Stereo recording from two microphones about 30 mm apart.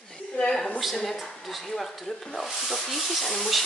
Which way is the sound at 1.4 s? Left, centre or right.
Centre.